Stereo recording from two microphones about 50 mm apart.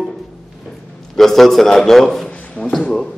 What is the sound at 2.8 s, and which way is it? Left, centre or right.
Speech, centre.